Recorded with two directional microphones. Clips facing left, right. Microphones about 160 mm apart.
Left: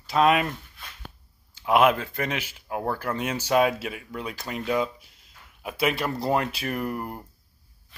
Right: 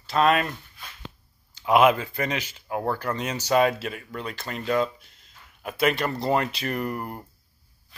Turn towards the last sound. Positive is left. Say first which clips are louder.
# even
turn(degrees=0)  # may be behind; listen again after turning